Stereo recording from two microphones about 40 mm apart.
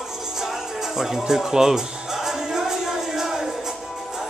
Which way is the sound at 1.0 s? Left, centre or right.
Centre.